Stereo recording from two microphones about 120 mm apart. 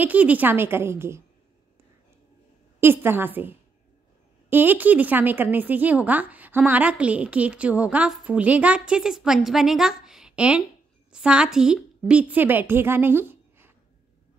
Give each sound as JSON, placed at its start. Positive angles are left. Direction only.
{"t": 0.0, "sound": "a woman's voice", "side_deg": -10}
{"t": 2.8, "sound": "a woman's voice", "side_deg": -20}